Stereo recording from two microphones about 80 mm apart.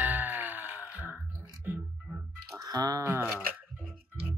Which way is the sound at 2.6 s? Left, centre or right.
Right.